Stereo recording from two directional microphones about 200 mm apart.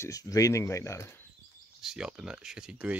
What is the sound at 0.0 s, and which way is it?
Speech, 15° left (ahead or behind).